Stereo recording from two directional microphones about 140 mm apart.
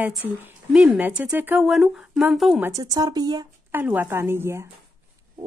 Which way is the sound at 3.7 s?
15° right (ahead or behind).